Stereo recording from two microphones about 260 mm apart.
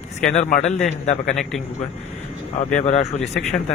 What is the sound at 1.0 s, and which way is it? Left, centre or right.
Speech, left.